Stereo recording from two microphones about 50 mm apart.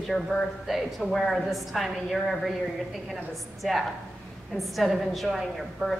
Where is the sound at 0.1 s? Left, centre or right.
Centre.